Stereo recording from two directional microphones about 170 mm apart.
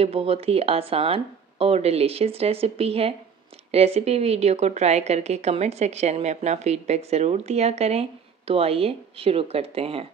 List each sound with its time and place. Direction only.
0.0 s a woman's voice: 35° right (ahead or behind)